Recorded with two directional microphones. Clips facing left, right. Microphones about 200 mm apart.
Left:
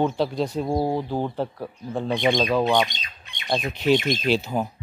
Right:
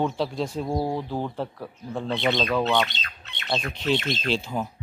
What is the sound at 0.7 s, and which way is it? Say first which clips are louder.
Speech: left 3 dB; 30° left (ahead or behind).